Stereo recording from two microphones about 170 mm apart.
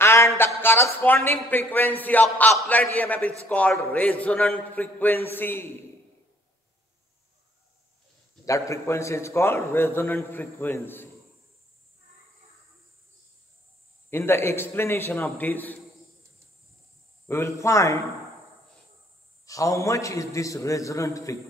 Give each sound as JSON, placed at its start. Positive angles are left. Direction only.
{"t": 0.0, "sound": "a sound", "side_deg": 15}
{"t": 0.6, "sound": "a man's voice", "side_deg": 15}
{"t": 8.5, "sound": "a man's voice", "side_deg": 15}
{"t": 14.1, "sound": "a man's voice", "side_deg": 15}
{"t": 17.3, "sound": "a man's voice", "side_deg": 15}
{"t": 19.4, "sound": "a man's voice", "side_deg": 20}